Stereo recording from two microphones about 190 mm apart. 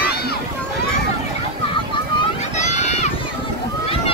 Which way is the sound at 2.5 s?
35° left (ahead or behind).